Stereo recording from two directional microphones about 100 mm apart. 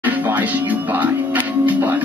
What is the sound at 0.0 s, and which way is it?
Music, 20° right (ahead or behind).